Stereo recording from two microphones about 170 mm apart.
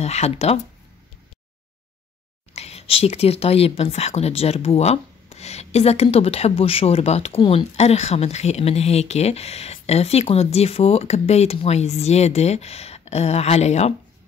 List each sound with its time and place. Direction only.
0.0 s speech: 40° left (ahead or behind)
2.5 s speech: 40° left (ahead or behind)